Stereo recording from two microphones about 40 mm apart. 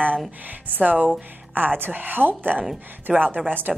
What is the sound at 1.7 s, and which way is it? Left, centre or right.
Speech, right.